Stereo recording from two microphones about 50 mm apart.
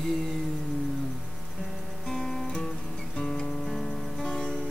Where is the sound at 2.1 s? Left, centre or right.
Centre.